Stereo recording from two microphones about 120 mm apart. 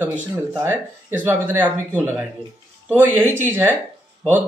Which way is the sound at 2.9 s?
15° right (ahead or behind).